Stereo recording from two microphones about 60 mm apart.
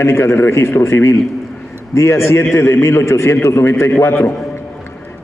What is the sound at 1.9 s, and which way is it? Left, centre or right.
A man's voice, left.